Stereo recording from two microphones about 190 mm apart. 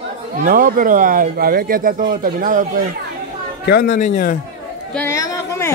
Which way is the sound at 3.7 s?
55° left (ahead or behind).